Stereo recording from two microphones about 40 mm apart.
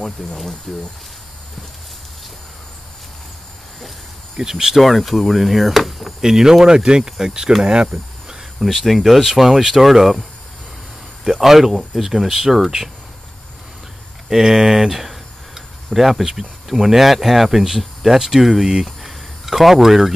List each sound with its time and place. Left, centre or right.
0.2 s speech: centre
4.4 s speech: centre
4.7 s speech: centre
6.2 s speech: centre
8.5 s speech: centre
11.4 s speech: centre
14.3 s speech: centre
19.0 s a sound: centre